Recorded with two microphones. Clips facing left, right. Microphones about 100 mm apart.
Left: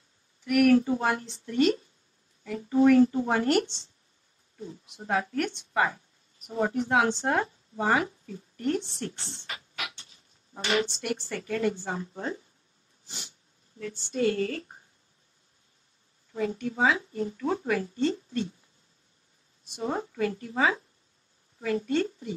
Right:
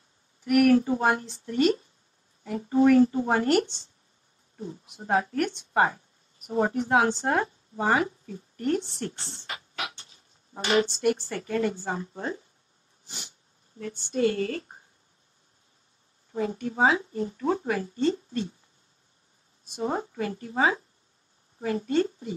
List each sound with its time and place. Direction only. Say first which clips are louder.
0.5 s a woman's voice: right 1 dB; 30° right (ahead or behind)
4.8 s a woman's voice: right 3 dB; 40° right (ahead or behind)
13.7 s a woman's voice: right 2 dB; 35° right (ahead or behind)
16.3 s a woman's voice: right 2 dB; 35° right (ahead or behind)
19.6 s a woman's voice: right 2 dB; 40° right (ahead or behind)